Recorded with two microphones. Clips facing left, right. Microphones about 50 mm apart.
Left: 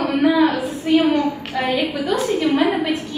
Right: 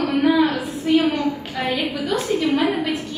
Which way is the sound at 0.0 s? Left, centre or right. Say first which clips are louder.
Left 1 dB; centre.